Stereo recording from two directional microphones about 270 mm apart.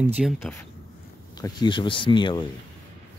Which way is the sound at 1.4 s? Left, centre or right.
Centre.